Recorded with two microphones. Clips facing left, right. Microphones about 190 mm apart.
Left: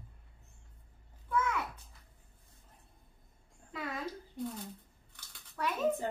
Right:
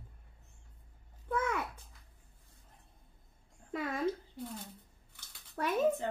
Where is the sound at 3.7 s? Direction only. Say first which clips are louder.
Right 4 dB; 50° right (ahead or behind).